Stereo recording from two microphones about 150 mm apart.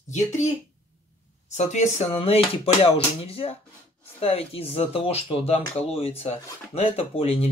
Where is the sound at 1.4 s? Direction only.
50° left (ahead or behind).